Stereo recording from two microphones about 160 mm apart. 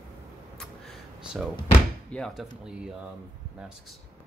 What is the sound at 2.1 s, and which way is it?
Speech, centre (ahead or behind).